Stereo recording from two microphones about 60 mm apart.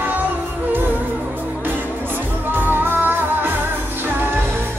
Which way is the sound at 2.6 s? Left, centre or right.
Right.